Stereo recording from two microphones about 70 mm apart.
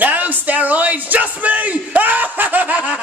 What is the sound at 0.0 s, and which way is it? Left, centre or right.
Bellow, right.